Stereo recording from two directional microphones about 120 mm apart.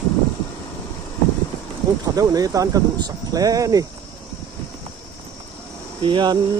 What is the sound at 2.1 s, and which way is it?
Speech, 30° right (ahead or behind).